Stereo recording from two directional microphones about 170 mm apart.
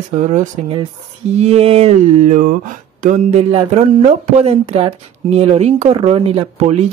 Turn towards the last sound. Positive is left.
turn(degrees=-40)  # may be behind; listen again after turning